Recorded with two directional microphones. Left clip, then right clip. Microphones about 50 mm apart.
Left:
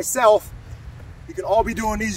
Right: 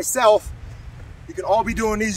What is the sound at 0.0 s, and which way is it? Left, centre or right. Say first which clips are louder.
Speech: even; centre.